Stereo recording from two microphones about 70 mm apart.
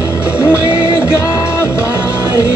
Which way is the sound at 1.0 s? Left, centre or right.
Left.